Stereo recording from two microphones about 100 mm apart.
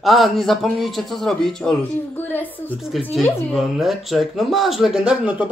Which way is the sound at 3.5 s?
5° right (ahead or behind).